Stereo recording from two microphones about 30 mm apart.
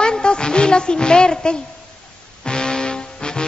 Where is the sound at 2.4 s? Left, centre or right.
Left.